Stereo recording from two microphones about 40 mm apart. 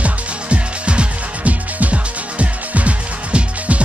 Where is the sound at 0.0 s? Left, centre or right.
Right.